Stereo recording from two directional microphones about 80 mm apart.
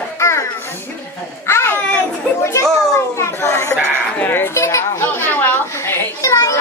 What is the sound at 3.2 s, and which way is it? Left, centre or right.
Chatter, left.